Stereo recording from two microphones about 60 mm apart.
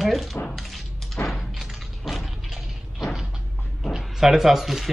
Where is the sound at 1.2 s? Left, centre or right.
Left.